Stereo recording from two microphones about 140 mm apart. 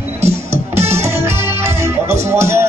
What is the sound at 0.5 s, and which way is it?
Music, 20° right (ahead or behind).